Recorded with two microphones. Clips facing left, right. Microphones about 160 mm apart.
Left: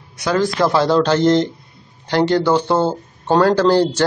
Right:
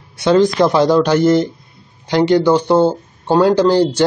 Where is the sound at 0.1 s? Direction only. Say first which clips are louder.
Right 6 dB; 25° right (ahead or behind).